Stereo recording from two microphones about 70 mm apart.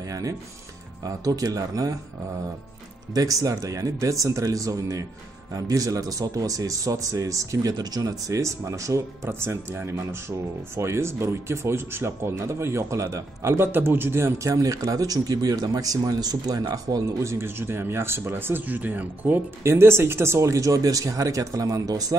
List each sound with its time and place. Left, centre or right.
1.0 s speech: right
3.4 s speech: right
7.7 s speech: right
9.3 s speech: right
10.8 s speech: right
17.2 s speech: right
19.6 s speech: right